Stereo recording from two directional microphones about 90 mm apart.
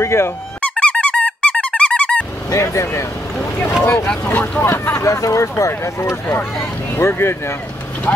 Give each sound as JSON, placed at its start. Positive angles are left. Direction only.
{"t": 0.0, "sound": "speech", "side_deg": 30}
{"t": 0.6, "sound": "squeak", "side_deg": 15}
{"t": 2.5, "sound": "speech", "side_deg": 35}
{"t": 3.3, "sound": "speech", "side_deg": 15}